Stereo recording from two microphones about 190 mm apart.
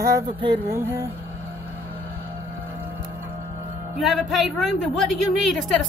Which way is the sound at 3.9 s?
Centre (ahead or behind).